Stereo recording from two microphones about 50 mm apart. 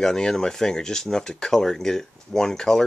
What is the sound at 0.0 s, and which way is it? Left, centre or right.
Speech, centre.